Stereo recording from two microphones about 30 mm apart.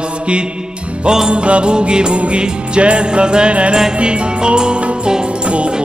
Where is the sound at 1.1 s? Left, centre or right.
Right.